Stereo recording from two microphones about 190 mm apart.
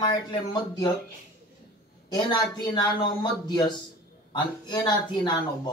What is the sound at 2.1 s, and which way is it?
Speech, 20° left (ahead or behind).